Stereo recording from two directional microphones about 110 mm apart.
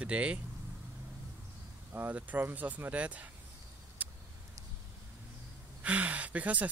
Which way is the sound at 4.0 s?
15° right (ahead or behind).